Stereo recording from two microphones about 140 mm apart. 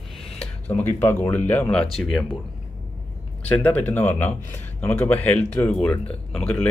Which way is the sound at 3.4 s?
10° left (ahead or behind).